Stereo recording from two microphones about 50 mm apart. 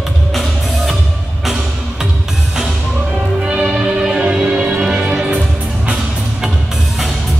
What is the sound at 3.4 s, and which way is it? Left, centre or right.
Music, centre.